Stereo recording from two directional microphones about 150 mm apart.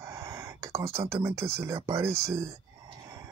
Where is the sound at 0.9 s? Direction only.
20° right (ahead or behind).